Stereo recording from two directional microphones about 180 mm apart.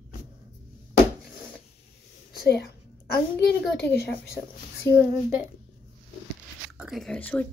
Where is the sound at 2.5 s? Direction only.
65° left (ahead or behind).